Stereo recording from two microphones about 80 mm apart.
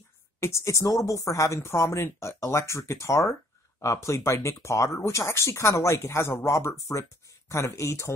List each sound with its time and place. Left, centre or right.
0.4 s speech: left